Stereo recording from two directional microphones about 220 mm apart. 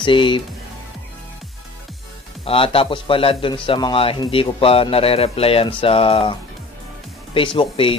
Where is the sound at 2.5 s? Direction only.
25° left (ahead or behind).